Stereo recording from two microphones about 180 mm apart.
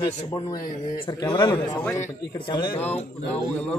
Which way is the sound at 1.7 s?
10° left (ahead or behind).